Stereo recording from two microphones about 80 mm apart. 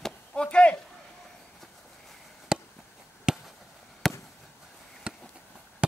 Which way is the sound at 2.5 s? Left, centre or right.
Centre.